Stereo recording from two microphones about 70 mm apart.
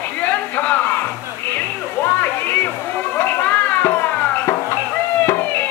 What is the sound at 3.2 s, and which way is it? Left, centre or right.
Run, left.